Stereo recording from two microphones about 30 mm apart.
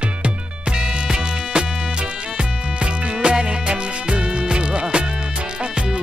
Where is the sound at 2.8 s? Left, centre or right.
Right.